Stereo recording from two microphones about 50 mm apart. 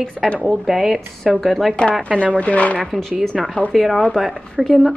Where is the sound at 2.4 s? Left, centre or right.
Left.